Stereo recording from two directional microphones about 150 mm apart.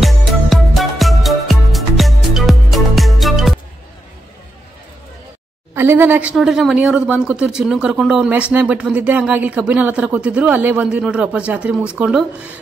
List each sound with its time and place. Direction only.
0.0 s music: centre (ahead or behind)
5.8 s a woman's voice: 15° right (ahead or behind)